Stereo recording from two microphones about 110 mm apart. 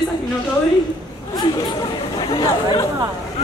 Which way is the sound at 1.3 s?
35° left (ahead or behind).